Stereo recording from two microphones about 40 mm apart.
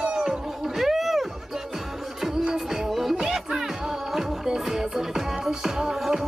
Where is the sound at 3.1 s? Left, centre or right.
Centre.